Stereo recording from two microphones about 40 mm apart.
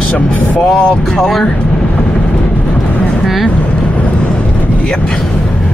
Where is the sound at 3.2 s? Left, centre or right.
Centre.